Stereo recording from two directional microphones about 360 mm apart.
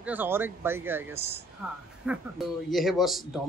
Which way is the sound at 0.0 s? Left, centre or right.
Centre.